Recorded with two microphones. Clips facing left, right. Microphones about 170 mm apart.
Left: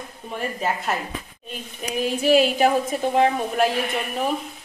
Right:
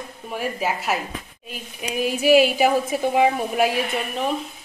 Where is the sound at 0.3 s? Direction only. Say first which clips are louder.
Right 1 dB; 5° right (ahead or behind).